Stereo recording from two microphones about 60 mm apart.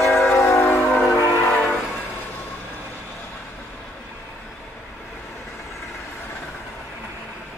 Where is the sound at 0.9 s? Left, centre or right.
Centre.